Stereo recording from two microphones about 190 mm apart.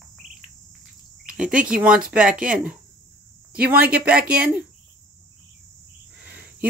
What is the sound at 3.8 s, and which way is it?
Speech, 5° right (ahead or behind).